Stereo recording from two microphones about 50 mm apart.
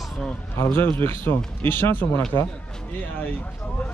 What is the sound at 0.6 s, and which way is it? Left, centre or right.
Speech, left.